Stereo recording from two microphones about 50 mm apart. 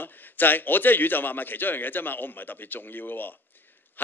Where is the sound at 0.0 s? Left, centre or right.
Left.